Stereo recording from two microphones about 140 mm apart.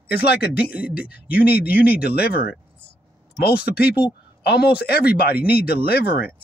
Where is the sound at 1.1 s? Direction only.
90° left.